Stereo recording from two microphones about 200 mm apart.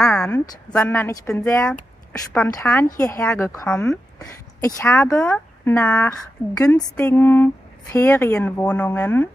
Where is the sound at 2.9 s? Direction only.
15° left (ahead or behind).